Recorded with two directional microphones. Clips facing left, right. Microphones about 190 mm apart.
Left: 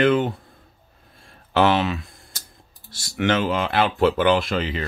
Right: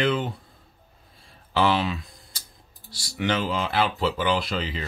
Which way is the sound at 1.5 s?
65° left (ahead or behind).